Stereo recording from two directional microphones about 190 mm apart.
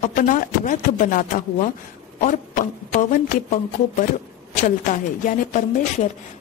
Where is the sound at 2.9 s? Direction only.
45° left (ahead or behind).